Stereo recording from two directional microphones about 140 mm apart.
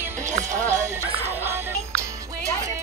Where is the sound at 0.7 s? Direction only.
20° right (ahead or behind).